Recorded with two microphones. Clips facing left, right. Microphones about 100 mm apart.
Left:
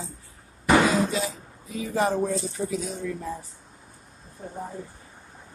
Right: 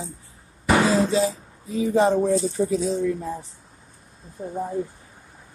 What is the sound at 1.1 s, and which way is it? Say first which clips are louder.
Speech: right 7 dB; 30° right (ahead or behind).